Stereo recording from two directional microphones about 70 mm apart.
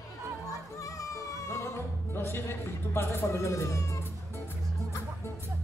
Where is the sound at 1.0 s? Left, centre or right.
Left.